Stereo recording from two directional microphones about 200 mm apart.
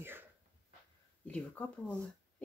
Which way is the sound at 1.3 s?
5° left (ahead or behind).